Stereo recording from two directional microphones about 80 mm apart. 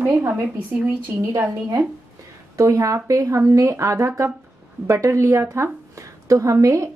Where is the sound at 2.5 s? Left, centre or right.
Right.